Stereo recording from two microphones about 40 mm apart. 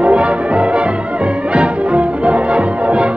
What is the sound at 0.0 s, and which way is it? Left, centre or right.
Music, right.